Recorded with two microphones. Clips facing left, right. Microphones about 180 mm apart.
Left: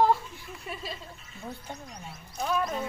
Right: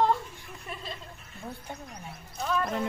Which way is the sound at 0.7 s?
5° left (ahead or behind).